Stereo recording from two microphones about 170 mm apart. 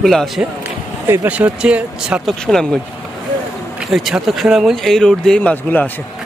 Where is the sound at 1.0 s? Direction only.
10° right (ahead or behind).